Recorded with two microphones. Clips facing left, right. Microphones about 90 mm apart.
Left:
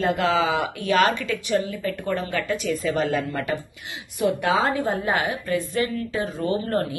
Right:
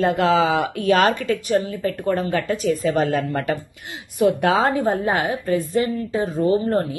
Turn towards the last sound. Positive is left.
turn(degrees=-25)  # may be behind; listen again after turning